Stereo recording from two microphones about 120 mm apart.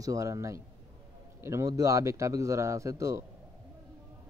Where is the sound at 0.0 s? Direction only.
25° right (ahead or behind).